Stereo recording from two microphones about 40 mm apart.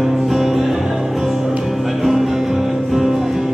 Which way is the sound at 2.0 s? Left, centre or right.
Centre.